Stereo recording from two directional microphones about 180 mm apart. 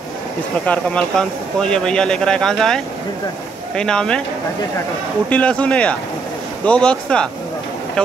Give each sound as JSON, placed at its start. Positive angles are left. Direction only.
{"t": 0.7, "sound": "speech", "side_deg": 5}
{"t": 5.3, "sound": "speech", "side_deg": 5}